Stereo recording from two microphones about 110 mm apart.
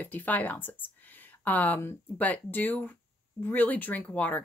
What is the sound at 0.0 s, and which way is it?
Speech, 15° left (ahead or behind).